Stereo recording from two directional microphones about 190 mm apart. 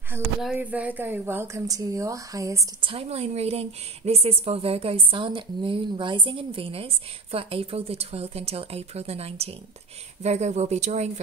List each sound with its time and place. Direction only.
0.4 s a woman's voice: 5° right (ahead or behind)
2.9 s a woman's voice: 30° right (ahead or behind)